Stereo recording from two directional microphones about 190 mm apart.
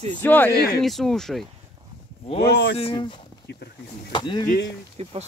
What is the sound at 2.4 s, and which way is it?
Speech, 55° left (ahead or behind).